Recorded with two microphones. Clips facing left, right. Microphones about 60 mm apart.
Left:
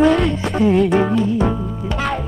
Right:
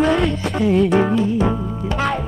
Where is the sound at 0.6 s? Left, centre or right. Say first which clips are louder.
Left 2 dB; left.